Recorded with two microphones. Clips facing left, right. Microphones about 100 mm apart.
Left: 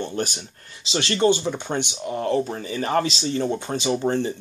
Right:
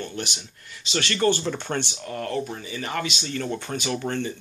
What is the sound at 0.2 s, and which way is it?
Speech, 40° left (ahead or behind).